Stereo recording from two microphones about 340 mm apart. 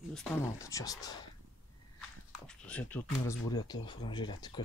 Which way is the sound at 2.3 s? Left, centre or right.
Centre.